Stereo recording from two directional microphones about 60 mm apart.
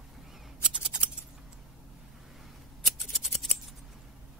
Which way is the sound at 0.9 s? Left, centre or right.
Centre.